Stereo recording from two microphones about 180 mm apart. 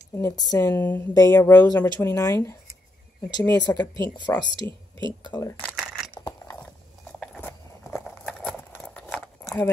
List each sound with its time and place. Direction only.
0.1 s speech: 20° left (ahead or behind)
3.9 s speech: 25° right (ahead or behind)
4.6 s speech: 15° left (ahead or behind)
5.2 s speech: 25° left (ahead or behind)
5.7 s a sound: 5° right (ahead or behind)
6.2 s biting: 15° left (ahead or behind)
7.2 s walk: 10° left (ahead or behind)
8.4 s a sound: 5° left (ahead or behind)